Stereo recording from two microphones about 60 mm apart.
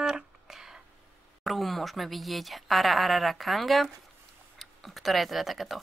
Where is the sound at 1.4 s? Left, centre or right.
Centre.